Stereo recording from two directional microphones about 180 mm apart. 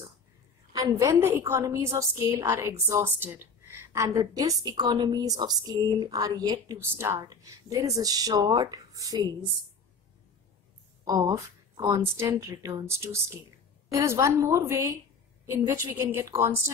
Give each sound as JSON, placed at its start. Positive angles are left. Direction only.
{"t": 0.7, "sound": "a woman's voice", "side_deg": -20}
{"t": 11.1, "sound": "a woman's voice", "side_deg": -20}